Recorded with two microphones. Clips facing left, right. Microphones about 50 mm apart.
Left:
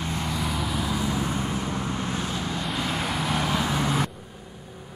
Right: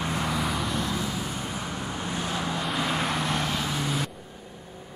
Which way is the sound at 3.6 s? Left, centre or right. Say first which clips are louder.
Left 4 dB; left.